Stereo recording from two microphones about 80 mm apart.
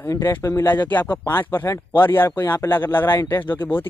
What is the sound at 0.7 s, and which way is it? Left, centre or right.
Speech, left.